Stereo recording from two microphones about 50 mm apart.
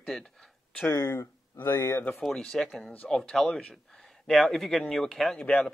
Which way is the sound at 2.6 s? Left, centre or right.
Centre.